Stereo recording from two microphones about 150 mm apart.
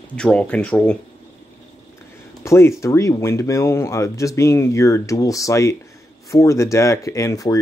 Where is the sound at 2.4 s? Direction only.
20° left (ahead or behind).